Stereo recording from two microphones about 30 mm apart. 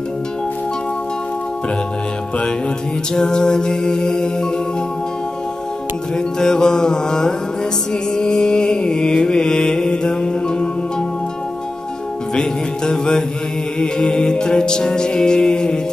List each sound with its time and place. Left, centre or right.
3.2 s music: left
6.1 s music: left
12.4 s music: left